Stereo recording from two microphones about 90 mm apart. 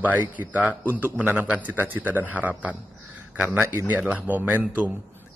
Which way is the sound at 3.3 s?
15° right (ahead or behind).